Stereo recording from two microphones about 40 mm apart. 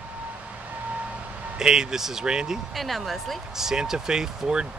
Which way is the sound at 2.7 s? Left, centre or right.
Centre.